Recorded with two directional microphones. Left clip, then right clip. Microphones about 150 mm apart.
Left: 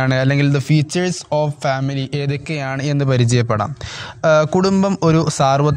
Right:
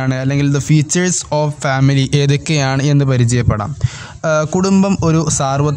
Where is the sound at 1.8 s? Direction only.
10° right (ahead or behind).